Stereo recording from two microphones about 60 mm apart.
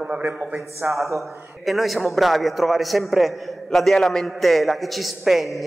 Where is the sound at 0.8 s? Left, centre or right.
Right.